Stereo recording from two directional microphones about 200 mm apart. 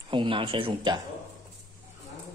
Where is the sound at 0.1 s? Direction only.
25° right (ahead or behind).